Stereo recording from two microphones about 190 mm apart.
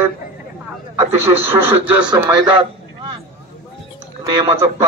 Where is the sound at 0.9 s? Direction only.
10° right (ahead or behind).